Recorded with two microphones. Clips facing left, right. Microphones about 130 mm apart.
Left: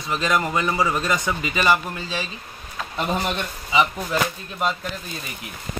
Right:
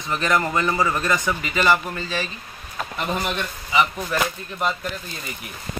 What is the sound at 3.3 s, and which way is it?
Speech, 20° left (ahead or behind).